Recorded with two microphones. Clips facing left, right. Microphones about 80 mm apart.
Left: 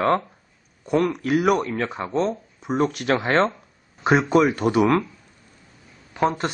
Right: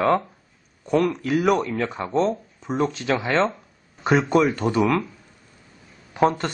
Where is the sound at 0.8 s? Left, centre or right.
Centre.